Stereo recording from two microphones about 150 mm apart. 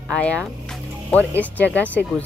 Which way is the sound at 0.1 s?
5° left (ahead or behind).